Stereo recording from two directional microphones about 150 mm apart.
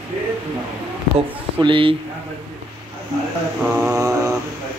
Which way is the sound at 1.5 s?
35° right (ahead or behind).